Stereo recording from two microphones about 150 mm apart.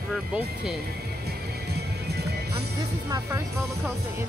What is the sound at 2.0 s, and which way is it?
Music, 90° right.